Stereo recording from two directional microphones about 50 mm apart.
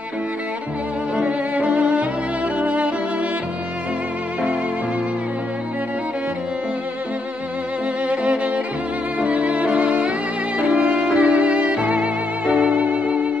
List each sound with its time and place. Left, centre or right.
1.5 s music: right
8.1 s music: right